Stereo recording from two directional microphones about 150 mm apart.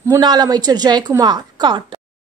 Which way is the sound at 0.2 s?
30° right (ahead or behind).